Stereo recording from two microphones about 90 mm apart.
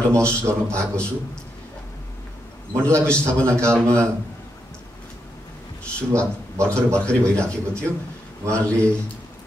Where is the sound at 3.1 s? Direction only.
10° left (ahead or behind).